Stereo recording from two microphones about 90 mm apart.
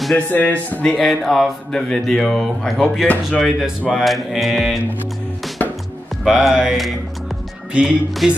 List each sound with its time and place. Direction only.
0.3 s speech: 20° left (ahead or behind)
0.8 s speech: 5° left (ahead or behind)
5.6 s music: 20° left (ahead or behind)
6.2 s speech: 5° right (ahead or behind)